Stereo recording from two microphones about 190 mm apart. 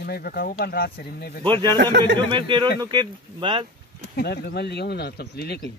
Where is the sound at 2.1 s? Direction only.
25° right (ahead or behind).